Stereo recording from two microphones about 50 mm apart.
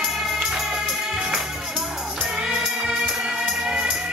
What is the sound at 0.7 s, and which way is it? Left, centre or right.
Music, centre.